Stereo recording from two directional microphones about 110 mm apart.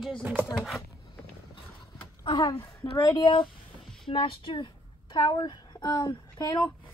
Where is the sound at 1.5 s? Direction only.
45° left (ahead or behind).